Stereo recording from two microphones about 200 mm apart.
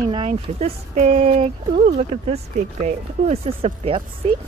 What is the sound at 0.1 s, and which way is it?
Speech, 30° right (ahead or behind).